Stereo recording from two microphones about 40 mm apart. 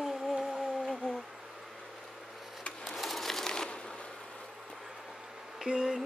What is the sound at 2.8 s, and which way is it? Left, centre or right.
Crumpling, centre.